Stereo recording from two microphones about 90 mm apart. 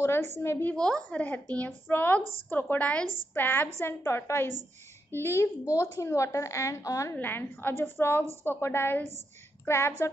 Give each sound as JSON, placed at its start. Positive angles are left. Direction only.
{"t": 0.0, "sound": "a woman's voice", "side_deg": 30}
{"t": 0.7, "sound": "a woman's voice", "side_deg": 10}
{"t": 7.2, "sound": "a woman's voice", "side_deg": 25}